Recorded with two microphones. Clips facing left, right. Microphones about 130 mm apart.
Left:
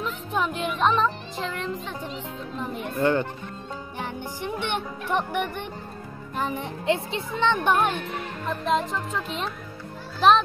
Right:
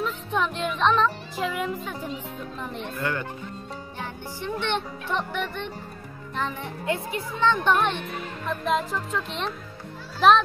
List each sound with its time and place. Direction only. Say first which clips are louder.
0.3 s music: left 1 dB; 5° left (ahead or behind)
1.3 s speech: right 2 dB; 5° right (ahead or behind)
3.0 s a child's voice: left 8 dB; 25° left (ahead or behind)
4.0 s music: left 2 dB; 15° left (ahead or behind)
6.3 s a child's voice: left 2 dB; 15° left (ahead or behind)
7.6 s speech: even; 10° left (ahead or behind)
8.5 s music: left 1 dB; centre (ahead or behind)